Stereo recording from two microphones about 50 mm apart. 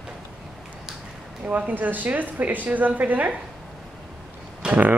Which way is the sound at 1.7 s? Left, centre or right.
Right.